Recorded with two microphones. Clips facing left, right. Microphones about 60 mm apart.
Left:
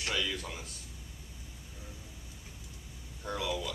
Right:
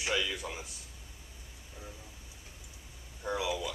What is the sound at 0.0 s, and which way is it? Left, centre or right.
Speech, centre.